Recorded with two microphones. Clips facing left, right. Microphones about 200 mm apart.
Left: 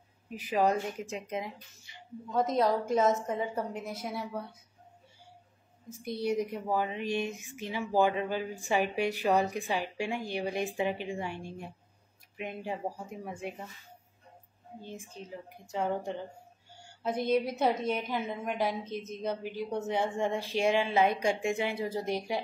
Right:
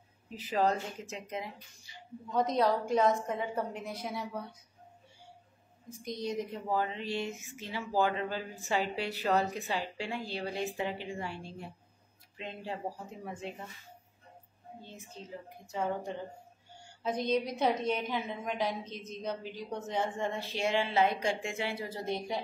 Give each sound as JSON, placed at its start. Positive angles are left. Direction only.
{"t": 0.3, "sound": "a woman's voice", "side_deg": 15}
{"t": 2.3, "sound": "a woman's voice", "side_deg": 5}
{"t": 6.0, "sound": "a woman's voice", "side_deg": 10}
{"t": 14.9, "sound": "a woman's voice", "side_deg": 15}
{"t": 17.3, "sound": "a woman's voice", "side_deg": 10}